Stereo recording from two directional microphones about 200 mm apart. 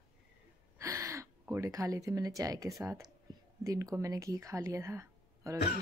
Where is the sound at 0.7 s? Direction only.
15° right (ahead or behind).